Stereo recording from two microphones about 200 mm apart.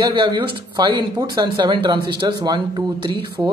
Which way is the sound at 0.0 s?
20° right (ahead or behind).